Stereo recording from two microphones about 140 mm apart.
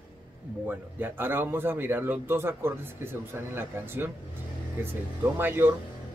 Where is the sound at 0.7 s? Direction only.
15° right (ahead or behind).